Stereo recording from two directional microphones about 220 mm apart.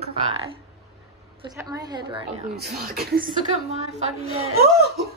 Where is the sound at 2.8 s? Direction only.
45° right (ahead or behind).